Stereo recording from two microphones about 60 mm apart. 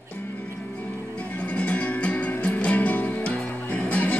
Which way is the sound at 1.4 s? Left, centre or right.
Centre.